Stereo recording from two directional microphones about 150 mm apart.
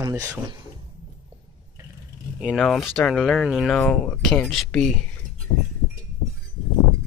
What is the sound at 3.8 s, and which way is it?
Speech, 10° left (ahead or behind).